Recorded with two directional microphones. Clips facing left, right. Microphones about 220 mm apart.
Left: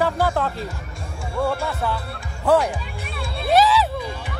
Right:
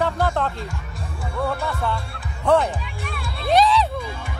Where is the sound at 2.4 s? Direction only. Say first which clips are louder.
Even; centre (ahead or behind).